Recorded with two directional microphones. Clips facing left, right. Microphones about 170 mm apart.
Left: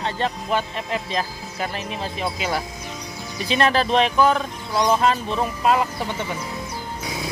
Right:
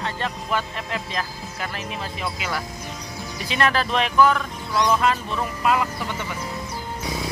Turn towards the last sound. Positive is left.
turn(degrees=30)  # may be behind; listen again after turning